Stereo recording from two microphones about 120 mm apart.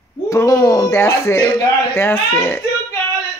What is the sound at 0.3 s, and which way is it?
A child's voice, 25° left (ahead or behind).